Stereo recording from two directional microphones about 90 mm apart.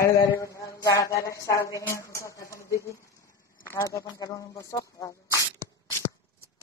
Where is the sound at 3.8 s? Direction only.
40° left (ahead or behind).